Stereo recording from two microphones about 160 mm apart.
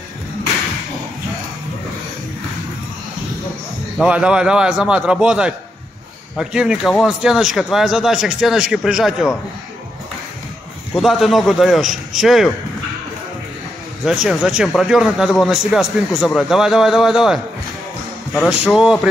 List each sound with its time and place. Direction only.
4.0 s a man's voice: 5° right (ahead or behind)
11.0 s a man's voice: centre (ahead or behind)
14.0 s a man's voice: 5° right (ahead or behind)
18.7 s a man's voice: 5° right (ahead or behind)